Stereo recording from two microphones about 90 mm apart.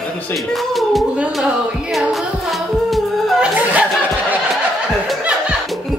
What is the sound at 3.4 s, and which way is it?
Music, 15° right (ahead or behind).